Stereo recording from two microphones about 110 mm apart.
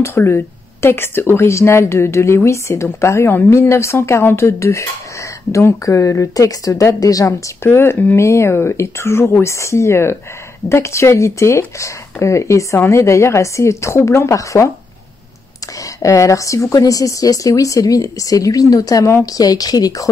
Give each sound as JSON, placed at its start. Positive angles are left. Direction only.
{"t": 0.0, "sound": "speech", "side_deg": 25}
{"t": 16.0, "sound": "a woman's voice", "side_deg": 30}